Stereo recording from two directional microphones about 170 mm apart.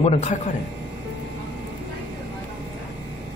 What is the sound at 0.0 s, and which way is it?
Speech, 40° left (ahead or behind).